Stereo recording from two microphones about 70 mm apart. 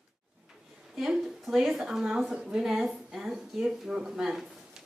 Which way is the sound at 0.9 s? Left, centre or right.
Centre.